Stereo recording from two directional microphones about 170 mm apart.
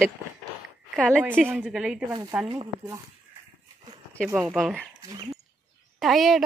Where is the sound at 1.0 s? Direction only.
5° left (ahead or behind).